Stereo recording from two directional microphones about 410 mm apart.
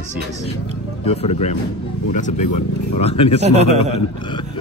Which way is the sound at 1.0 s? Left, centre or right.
Centre.